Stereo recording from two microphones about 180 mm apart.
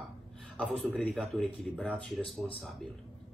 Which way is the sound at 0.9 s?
Centre (ahead or behind).